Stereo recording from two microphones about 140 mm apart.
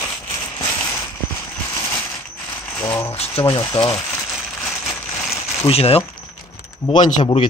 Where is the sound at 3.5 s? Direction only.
30° left (ahead or behind).